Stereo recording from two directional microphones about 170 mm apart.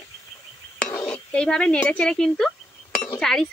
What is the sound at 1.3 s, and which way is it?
Speech, 5° left (ahead or behind).